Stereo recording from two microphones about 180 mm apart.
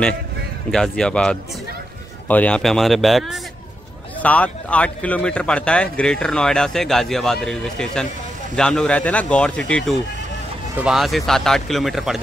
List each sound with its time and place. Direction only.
0.7 s speech: 5° left (ahead or behind)